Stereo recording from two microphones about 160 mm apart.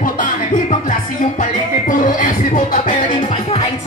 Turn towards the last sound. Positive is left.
turn(degrees=30)  # may be behind; listen again after turning